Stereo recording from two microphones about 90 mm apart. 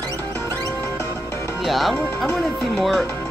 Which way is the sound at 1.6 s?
Centre (ahead or behind).